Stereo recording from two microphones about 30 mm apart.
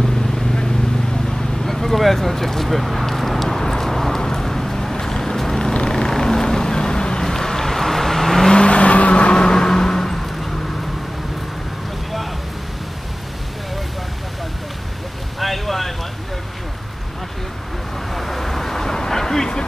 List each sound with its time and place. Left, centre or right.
1.7 s a sound: centre
4.2 s vehicle: centre
5.7 s vehicle: left
7.2 s vehicle: centre
8.5 s vehicle: left; by 10.5 s centre
15.3 s boat: centre
18.1 s vehicle: centre